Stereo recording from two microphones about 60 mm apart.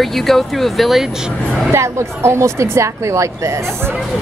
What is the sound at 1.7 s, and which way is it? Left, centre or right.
Speech, right.